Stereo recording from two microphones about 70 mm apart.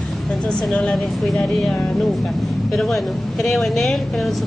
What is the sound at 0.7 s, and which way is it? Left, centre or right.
Speech, centre.